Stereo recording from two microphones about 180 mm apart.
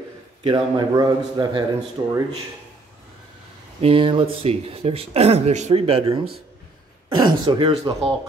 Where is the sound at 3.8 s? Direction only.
30° right (ahead or behind).